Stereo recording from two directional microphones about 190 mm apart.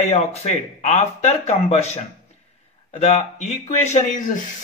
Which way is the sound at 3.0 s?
35° left (ahead or behind).